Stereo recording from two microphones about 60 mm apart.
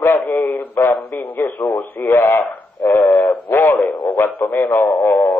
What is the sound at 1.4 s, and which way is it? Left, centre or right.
Speech, left.